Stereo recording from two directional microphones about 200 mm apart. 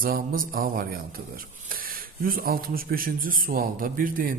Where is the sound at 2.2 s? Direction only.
45° right (ahead or behind).